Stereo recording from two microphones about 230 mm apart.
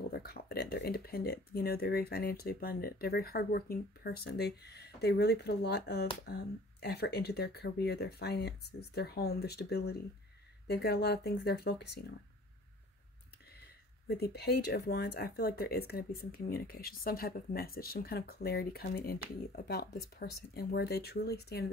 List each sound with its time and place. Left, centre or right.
0.1 s speech: left
13.6 s speech: left